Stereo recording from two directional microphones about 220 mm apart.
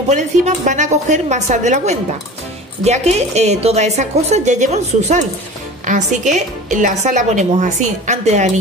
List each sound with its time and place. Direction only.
0.1 s a woman's voice: 35° right (ahead or behind)